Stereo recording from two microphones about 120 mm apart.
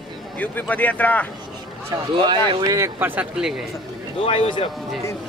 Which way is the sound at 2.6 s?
25° right (ahead or behind).